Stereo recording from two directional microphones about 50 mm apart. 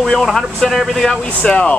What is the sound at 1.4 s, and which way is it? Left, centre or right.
Speech, left.